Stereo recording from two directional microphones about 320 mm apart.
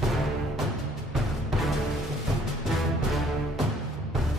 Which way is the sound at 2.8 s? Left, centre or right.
Centre.